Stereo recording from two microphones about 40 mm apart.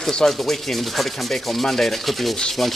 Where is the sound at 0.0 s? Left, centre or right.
Centre.